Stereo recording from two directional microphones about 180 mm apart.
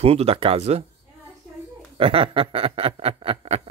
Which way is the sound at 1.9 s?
30° right (ahead or behind).